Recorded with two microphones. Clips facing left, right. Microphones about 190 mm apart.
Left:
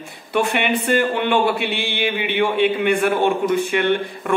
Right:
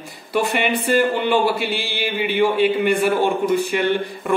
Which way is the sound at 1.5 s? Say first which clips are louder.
Left 1 dB; 60° left (ahead or behind).